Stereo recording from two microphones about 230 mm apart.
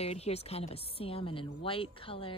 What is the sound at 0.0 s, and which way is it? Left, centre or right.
Speech, left.